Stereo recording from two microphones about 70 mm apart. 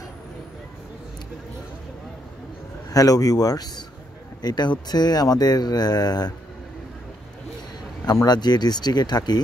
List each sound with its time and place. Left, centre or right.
2.9 s speech: left
4.4 s speech: left
8.0 s speech: left